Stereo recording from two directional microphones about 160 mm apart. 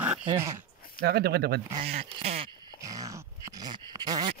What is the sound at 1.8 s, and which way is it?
Speech, 40° right (ahead or behind).